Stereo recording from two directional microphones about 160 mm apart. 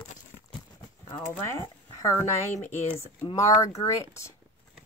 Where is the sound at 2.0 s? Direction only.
20° left (ahead or behind).